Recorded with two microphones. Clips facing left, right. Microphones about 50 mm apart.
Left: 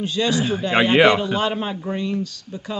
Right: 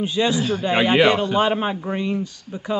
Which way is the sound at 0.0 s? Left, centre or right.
Centre.